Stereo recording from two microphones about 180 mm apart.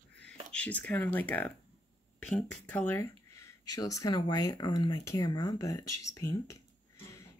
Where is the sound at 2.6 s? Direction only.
10° left (ahead or behind).